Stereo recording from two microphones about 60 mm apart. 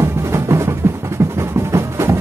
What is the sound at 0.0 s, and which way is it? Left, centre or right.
Music, right.